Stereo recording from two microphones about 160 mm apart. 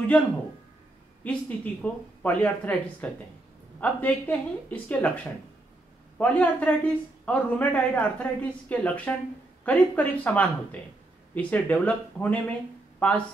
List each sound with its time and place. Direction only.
1.2 s speech: 10° left (ahead or behind)